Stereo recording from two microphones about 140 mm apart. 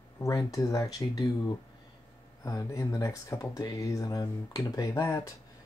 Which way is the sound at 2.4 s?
25° left (ahead or behind).